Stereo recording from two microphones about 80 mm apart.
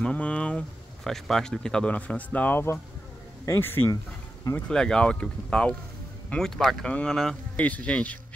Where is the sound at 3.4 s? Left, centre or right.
Left.